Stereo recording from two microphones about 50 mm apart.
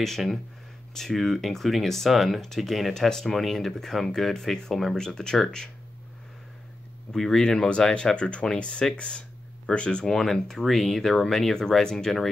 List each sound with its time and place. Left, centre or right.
0.0 s speech: centre
7.1 s speech: centre